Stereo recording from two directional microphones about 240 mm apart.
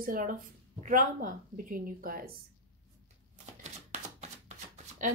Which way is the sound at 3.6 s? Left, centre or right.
Right.